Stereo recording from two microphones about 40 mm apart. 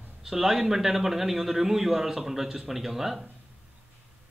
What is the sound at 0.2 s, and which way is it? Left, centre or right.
A man's voice, centre.